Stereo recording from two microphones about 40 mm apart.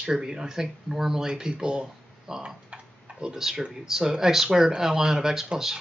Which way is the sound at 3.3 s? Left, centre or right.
Centre.